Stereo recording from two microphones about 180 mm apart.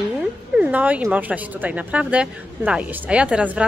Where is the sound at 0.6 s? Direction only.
10° right (ahead or behind).